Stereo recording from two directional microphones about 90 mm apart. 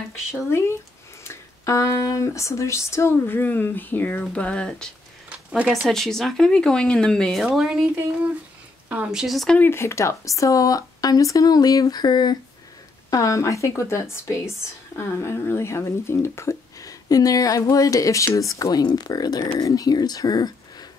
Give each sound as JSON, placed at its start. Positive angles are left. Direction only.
{"t": 0.3, "sound": "speech", "side_deg": 30}
{"t": 1.2, "sound": "a sound", "side_deg": 30}
{"t": 5.9, "sound": "speech", "side_deg": 5}
{"t": 7.4, "sound": "speech", "side_deg": -5}
{"t": 8.8, "sound": "a sound", "side_deg": -15}
{"t": 9.1, "sound": "speech", "side_deg": -5}
{"t": 9.6, "sound": "speech", "side_deg": 30}
{"t": 13.1, "sound": "speech", "side_deg": 35}